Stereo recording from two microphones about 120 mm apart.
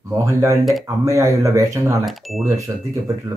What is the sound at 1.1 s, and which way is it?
Speech, 30° right (ahead or behind).